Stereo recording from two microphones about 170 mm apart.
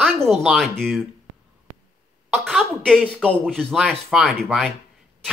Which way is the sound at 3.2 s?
5° left (ahead or behind).